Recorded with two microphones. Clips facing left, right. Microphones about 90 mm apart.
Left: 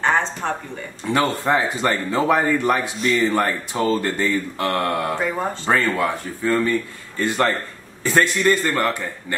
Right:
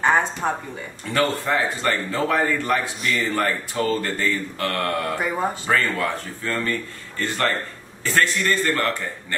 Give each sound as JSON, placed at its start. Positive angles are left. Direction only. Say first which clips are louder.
{"t": 0.0, "sound": "a sound", "louder": "even", "side_deg": -10}
{"t": 1.0, "sound": "speech", "louder": "left 2 dB", "side_deg": 20}
{"t": 5.2, "sound": "speech", "louder": "even", "side_deg": -10}
{"t": 5.7, "sound": "speech", "louder": "left 5 dB", "side_deg": 15}